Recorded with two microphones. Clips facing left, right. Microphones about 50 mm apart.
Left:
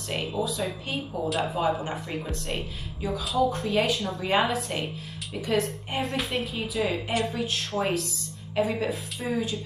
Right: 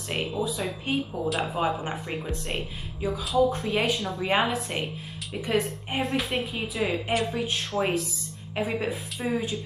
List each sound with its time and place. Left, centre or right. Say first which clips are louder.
0.1 s speech: even; centre
5.5 s a woman's voice: even; centre
5.9 s speech: right 1 dB; centre
8.5 s speech: left 3 dB; centre
8.8 s speech: even; centre